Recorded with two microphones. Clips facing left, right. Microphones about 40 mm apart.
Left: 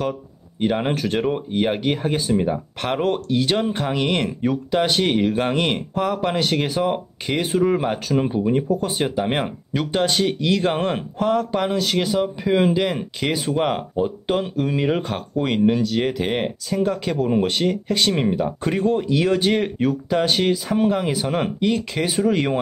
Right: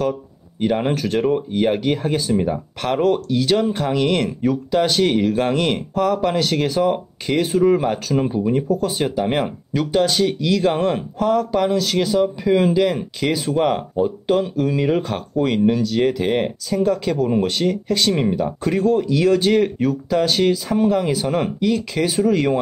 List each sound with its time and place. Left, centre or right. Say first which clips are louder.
0.6 s speech: right 2 dB; centre